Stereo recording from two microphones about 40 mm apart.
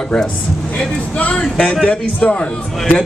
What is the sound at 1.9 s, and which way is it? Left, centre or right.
Speech, left.